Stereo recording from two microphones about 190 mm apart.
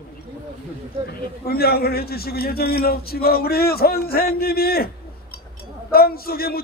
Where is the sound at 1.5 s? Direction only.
55° left (ahead or behind).